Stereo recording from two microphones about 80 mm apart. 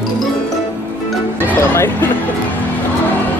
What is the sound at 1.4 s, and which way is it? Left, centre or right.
Music, left.